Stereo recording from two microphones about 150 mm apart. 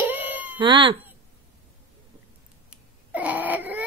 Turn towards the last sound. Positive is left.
turn(degrees=-10)  # may be behind; listen again after turning